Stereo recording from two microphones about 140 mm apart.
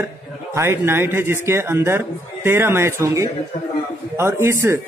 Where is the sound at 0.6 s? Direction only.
15° right (ahead or behind).